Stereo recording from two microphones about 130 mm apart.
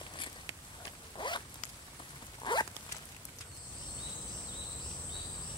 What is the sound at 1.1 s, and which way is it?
Zipper, 35° left (ahead or behind).